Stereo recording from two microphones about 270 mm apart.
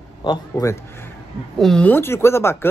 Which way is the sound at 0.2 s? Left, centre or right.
Centre.